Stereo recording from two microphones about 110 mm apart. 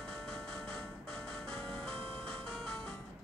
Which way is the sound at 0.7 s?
20° left (ahead or behind).